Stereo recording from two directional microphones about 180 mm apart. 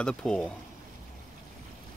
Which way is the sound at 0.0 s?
5° left (ahead or behind).